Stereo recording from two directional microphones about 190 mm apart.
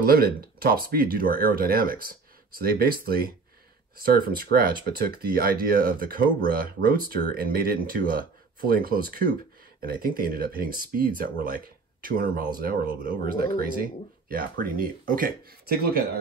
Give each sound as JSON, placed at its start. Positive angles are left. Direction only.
{"t": 0.0, "sound": "speech", "side_deg": -55}
{"t": 14.3, "sound": "speech", "side_deg": -50}